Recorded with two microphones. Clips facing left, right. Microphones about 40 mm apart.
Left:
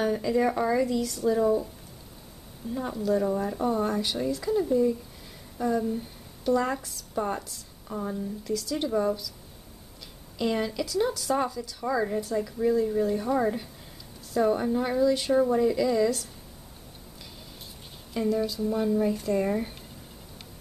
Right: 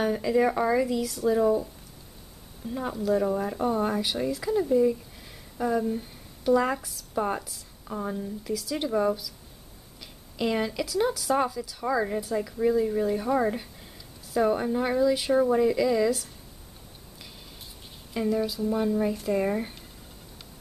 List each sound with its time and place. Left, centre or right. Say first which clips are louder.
0.0 s speech: right 1 dB; centre
2.7 s a woman's voice: right 1 dB; centre
10.3 s speech: right 1 dB; centre
18.1 s speech: even; centre